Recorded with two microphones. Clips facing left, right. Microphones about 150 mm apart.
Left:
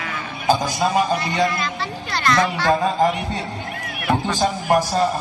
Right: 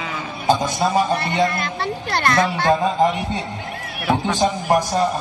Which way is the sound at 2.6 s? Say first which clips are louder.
Right 1 dB; 20° right (ahead or behind).